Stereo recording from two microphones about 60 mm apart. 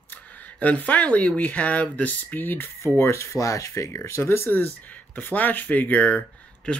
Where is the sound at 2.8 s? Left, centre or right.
Left.